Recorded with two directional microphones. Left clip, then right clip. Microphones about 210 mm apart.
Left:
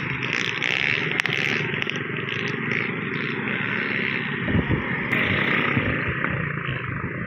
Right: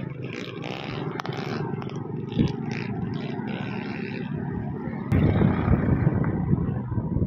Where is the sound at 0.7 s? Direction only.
45° right (ahead or behind).